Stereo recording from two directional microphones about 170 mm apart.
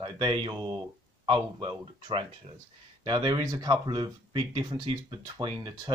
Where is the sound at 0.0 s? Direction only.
30° right (ahead or behind).